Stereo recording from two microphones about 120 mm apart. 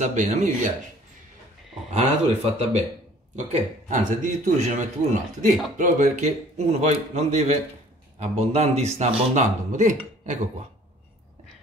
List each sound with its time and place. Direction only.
0.0 s a man's voice: 85° right
2.0 s speech: 60° right (ahead or behind)
3.3 s a man's voice: 90° right; by 9.1 s 65° right (ahead or behind)
9.3 s a man's voice: 90° right